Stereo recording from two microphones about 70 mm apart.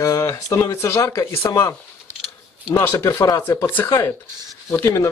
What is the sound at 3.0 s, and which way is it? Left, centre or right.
Speech, left.